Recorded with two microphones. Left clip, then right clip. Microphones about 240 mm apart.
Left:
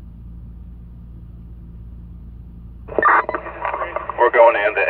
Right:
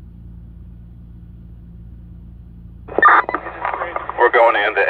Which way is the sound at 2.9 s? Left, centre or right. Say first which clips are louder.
Right 3 dB; right.